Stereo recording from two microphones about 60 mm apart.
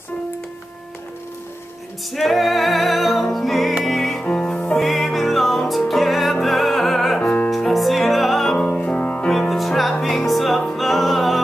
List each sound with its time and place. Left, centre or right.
2.1 s music: centre
4.2 s music: centre
4.7 s music: centre
8.5 s music: centre
9.5 s music: centre